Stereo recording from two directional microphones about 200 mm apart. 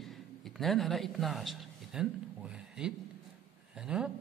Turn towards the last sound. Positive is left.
turn(degrees=-5)  # may be behind; listen again after turning